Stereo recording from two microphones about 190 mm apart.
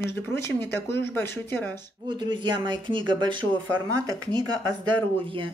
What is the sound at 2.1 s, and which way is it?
Speech, 25° right (ahead or behind).